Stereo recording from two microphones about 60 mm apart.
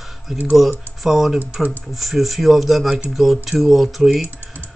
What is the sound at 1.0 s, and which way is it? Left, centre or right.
Speech, centre.